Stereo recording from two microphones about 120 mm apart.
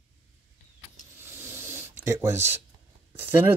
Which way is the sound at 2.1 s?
25° right (ahead or behind).